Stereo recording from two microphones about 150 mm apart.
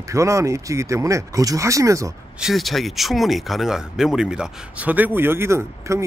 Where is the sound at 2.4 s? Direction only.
Centre (ahead or behind).